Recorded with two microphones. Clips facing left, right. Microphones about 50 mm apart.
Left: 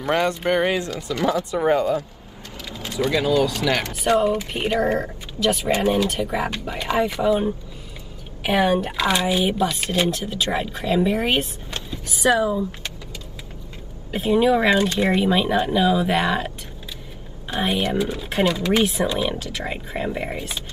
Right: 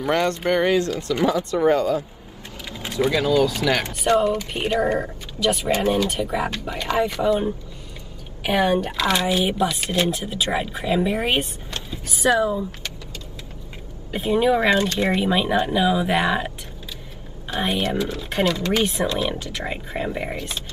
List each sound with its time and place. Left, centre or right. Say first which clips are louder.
0.1 s speech: left 1 dB; centre
3.1 s speech: even; centre
4.1 s speech: even; centre
14.1 s speech: left 1 dB; centre
17.6 s speech: left 1 dB; centre
17.9 s speech: left 1 dB; centre